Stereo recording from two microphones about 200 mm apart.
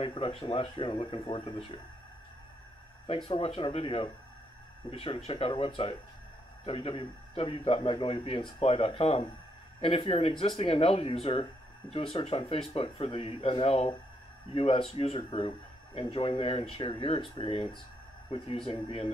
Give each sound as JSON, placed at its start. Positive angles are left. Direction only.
{"t": 0.0, "sound": "a man's voice", "side_deg": 25}
{"t": 3.3, "sound": "a man's voice", "side_deg": 30}